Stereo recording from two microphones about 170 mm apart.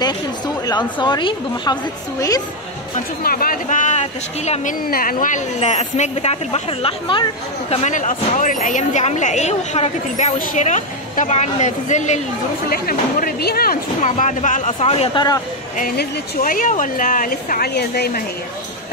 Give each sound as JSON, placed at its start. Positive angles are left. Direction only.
{"t": 0.7, "sound": "a woman's voice", "side_deg": 25}
{"t": 3.3, "sound": "a woman's voice", "side_deg": 60}
{"t": 4.8, "sound": "a woman's voice", "side_deg": 55}
{"t": 7.7, "sound": "a woman's voice", "side_deg": 45}
{"t": 12.6, "sound": "a woman's voice", "side_deg": 60}
{"t": 14.0, "sound": "speech", "side_deg": 45}
{"t": 15.8, "sound": "a woman's voice", "side_deg": 55}